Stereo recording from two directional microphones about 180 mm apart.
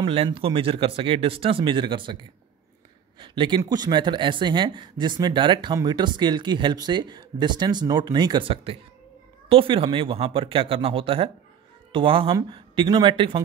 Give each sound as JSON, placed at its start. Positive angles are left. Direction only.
{"t": 0.0, "sound": "speech", "side_deg": -30}
{"t": 3.2, "sound": "speech", "side_deg": -25}